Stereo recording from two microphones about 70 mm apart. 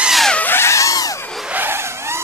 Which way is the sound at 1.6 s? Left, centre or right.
Right.